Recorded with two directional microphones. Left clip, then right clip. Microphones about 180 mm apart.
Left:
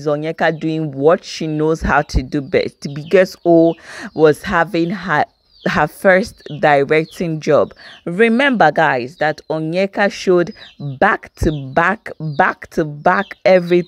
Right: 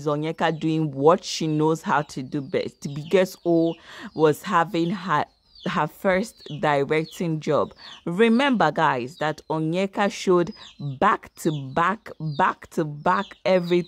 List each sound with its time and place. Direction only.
0.0 s speech: 5° left (ahead or behind)
1.9 s speech: 15° left (ahead or behind)
2.8 s speech: 5° left (ahead or behind)
3.4 s speech: 20° left (ahead or behind)
4.1 s speech: 10° left (ahead or behind)
8.0 s speech: centre (ahead or behind)